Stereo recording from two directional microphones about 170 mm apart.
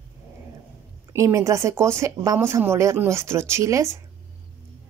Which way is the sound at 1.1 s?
15° right (ahead or behind).